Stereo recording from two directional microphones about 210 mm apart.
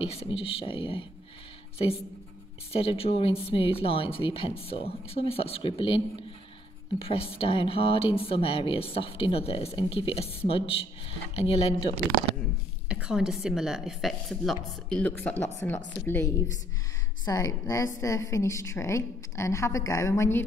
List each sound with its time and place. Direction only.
0.0 s speech: 30° left (ahead or behind)
2.7 s speech: 25° left (ahead or behind)
12.8 s a woman's voice: 5° right (ahead or behind); by 20.4 s 10° left (ahead or behind)